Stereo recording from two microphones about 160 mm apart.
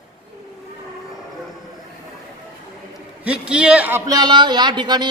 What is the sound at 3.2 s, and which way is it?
A man's voice, 5° right (ahead or behind).